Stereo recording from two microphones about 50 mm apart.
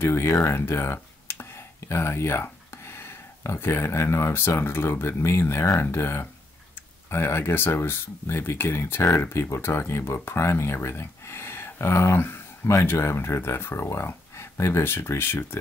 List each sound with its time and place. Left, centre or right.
0.0 s speech: left
0.9 s a sound: left
2.8 s speech: left
9.6 s speech: left